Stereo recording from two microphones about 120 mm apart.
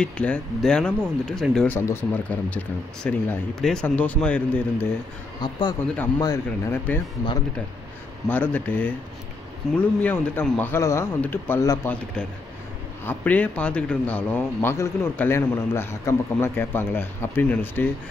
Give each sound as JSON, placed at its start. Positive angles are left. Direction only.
{"t": 0.0, "sound": "a man's voice", "side_deg": 10}
{"t": 1.7, "sound": "a man's voice", "side_deg": 20}
{"t": 5.4, "sound": "speech", "side_deg": 40}
{"t": 8.3, "sound": "a man's voice", "side_deg": 15}
{"t": 10.7, "sound": "a man's voice", "side_deg": 25}
{"t": 11.6, "sound": "speech", "side_deg": 30}
{"t": 13.0, "sound": "a man's voice", "side_deg": 15}